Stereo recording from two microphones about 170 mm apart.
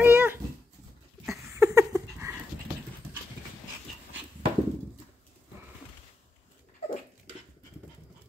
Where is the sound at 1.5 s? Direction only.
20° right (ahead or behind).